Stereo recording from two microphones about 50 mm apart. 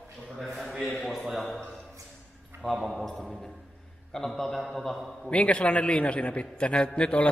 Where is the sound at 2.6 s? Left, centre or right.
Centre.